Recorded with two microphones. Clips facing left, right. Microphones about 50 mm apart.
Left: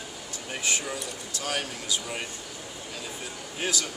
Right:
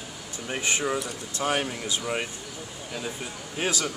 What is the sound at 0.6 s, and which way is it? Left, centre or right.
Speech, right.